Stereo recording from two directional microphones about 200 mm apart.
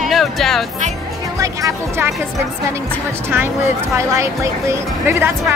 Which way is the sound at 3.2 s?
10° right (ahead or behind).